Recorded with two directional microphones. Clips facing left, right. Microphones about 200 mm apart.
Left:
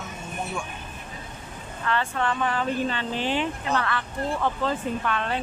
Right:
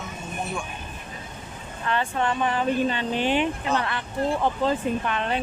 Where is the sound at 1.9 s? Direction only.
20° right (ahead or behind).